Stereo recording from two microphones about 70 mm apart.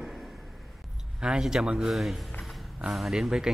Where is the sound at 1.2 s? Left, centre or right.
Centre.